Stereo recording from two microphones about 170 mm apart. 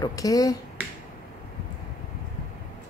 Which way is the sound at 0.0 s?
20° left (ahead or behind).